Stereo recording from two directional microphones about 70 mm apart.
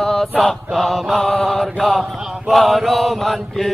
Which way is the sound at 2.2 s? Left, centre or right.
Centre.